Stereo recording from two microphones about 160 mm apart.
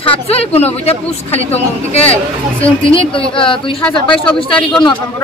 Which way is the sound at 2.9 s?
35° left (ahead or behind).